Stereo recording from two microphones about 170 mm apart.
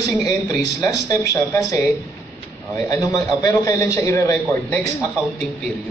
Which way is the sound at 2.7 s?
20° left (ahead or behind).